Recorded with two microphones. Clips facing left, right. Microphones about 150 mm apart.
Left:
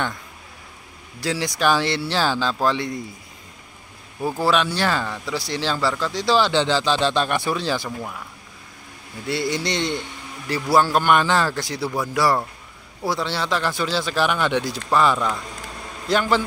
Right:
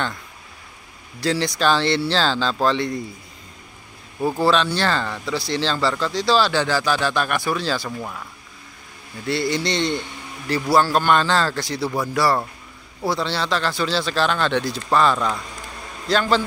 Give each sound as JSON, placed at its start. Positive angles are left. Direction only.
{"t": 1.2, "sound": "speech", "side_deg": 10}
{"t": 4.4, "sound": "speech", "side_deg": 10}
{"t": 8.0, "sound": "speech", "side_deg": 5}
{"t": 9.3, "sound": "speech", "side_deg": 15}